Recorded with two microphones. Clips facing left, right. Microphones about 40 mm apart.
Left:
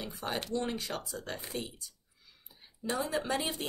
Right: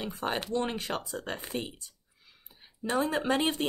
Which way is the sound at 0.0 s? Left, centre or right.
Right.